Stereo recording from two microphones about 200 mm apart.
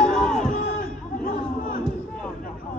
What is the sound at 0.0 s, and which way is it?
Crowd, 5° left (ahead or behind).